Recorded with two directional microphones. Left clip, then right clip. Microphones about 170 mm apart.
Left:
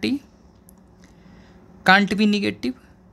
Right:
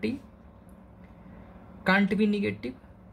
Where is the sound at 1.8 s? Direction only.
60° left (ahead or behind).